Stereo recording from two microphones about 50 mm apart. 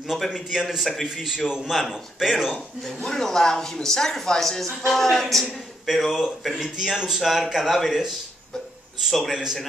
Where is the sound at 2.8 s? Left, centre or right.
Centre.